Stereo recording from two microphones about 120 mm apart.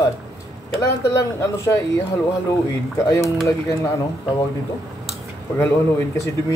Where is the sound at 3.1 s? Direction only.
25° left (ahead or behind).